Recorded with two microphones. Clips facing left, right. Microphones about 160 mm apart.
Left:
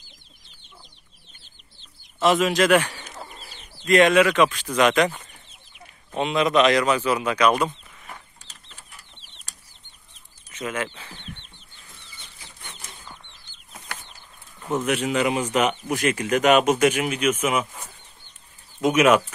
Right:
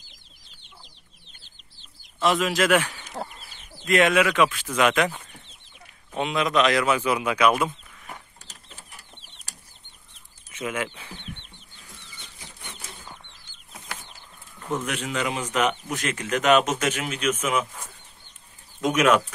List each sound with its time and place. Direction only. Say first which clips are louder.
2.1 s speech: left 3 dB; centre (ahead or behind)
8.6 s bird flight: right 2 dB; 50° right (ahead or behind)
10.5 s speech: left 1 dB; 10° right (ahead or behind)
14.9 s speech: left 6 dB; 10° left (ahead or behind)
18.8 s speech: left 3 dB; 10° left (ahead or behind)